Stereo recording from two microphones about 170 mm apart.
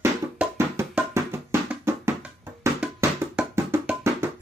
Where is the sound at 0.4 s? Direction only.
10° right (ahead or behind).